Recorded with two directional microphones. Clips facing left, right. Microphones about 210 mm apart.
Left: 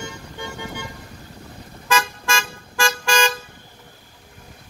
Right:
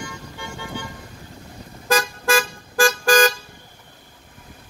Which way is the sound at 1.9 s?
35° right (ahead or behind).